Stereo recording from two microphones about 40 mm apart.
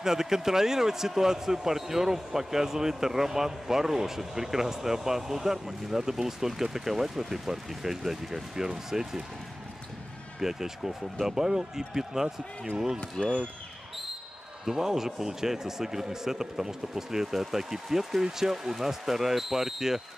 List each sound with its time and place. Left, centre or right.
0.0 s speech: centre
10.4 s speech: centre
14.6 s speech: centre